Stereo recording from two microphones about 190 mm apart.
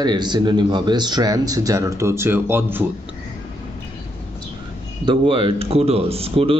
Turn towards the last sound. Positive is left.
turn(degrees=-30)  # may be behind; listen again after turning